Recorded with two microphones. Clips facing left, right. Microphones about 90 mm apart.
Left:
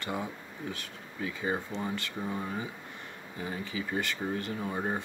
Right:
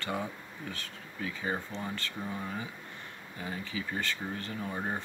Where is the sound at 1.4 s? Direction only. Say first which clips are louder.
Left 3 dB; 15° left (ahead or behind).